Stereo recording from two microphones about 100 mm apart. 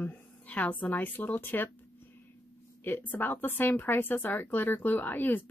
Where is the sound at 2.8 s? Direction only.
20° left (ahead or behind).